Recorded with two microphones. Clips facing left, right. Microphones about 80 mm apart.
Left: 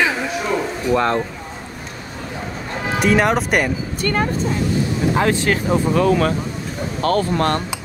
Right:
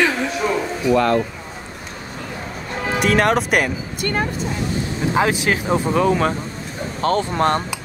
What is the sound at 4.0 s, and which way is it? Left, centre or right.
Speech, left.